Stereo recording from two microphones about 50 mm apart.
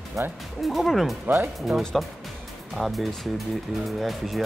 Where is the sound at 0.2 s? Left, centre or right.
Right.